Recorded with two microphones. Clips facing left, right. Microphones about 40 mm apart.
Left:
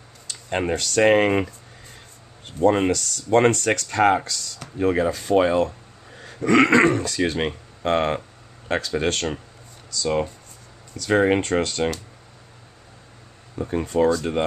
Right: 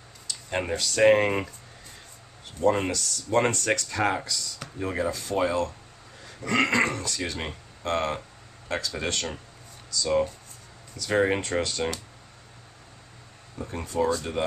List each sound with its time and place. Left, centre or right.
0.3 s speech: left
2.6 s speech: left
2.9 s speech: left
7.8 s speech: left
8.6 s speech: left
13.6 s speech: left